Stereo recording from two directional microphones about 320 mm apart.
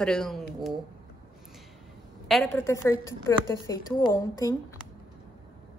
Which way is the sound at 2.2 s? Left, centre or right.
Centre.